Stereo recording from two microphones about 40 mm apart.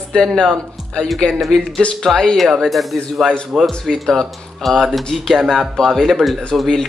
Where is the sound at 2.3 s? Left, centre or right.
Centre.